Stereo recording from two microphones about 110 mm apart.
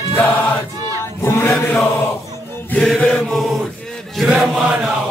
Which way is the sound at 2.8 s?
Centre (ahead or behind).